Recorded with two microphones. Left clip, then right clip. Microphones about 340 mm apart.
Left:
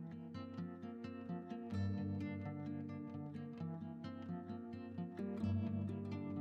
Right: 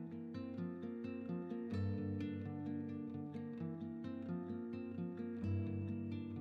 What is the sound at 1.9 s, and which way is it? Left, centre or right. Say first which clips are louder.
Music: right 2 dB; left.